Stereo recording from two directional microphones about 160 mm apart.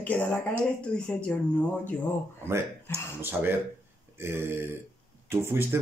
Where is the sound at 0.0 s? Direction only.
10° left (ahead or behind).